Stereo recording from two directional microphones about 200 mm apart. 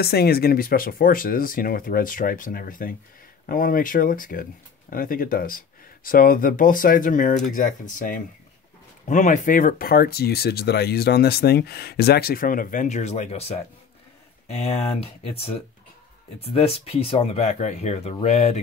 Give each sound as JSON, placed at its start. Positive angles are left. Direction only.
{"t": 0.0, "sound": "speech", "side_deg": 50}